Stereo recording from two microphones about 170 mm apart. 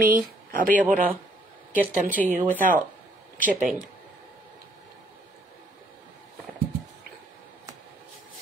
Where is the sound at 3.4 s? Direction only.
50° right (ahead or behind).